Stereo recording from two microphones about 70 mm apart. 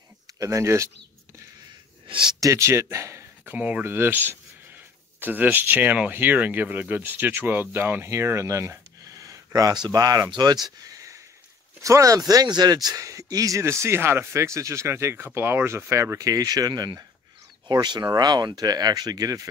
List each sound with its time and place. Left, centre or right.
0.4 s speech: right
2.4 s a man's voice: right
3.5 s speech: centre
3.8 s speech: right
17.6 s speech: right